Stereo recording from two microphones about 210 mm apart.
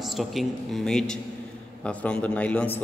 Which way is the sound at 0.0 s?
Centre (ahead or behind).